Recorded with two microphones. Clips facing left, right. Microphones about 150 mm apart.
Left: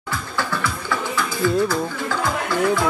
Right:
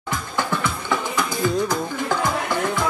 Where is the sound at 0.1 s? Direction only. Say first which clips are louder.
Right 1 dB; 20° right (ahead or behind).